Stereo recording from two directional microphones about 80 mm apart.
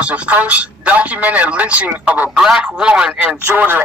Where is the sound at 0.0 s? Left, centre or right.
Centre.